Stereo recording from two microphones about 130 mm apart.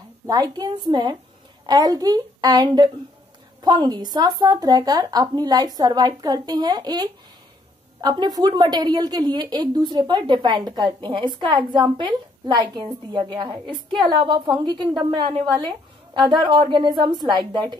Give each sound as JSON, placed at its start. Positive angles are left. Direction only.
{"t": 0.3, "sound": "a woman's voice", "side_deg": -30}